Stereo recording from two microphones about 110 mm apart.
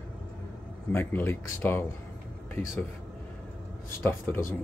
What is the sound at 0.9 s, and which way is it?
Speech, 20° left (ahead or behind).